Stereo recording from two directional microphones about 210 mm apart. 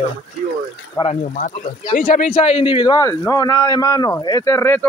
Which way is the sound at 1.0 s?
30° left (ahead or behind).